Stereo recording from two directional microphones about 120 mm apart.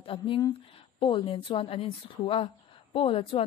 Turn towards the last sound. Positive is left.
turn(degrees=50)  # may be behind; listen again after turning